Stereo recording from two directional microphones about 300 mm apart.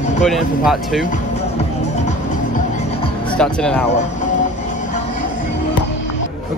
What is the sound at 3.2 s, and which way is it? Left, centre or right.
Speech, centre.